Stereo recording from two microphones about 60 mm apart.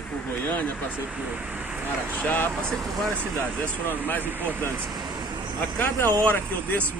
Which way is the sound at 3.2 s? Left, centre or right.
Right.